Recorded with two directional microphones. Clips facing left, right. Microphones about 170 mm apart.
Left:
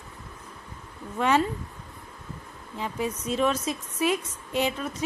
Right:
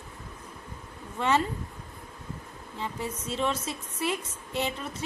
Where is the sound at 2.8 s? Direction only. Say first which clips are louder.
Left 4 dB; 15° left (ahead or behind).